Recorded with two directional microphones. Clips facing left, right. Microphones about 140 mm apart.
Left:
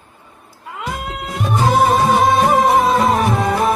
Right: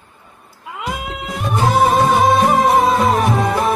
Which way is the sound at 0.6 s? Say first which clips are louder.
Right 1 dB; centre (ahead or behind).